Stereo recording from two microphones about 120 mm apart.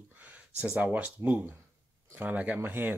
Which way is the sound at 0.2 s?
15° right (ahead or behind).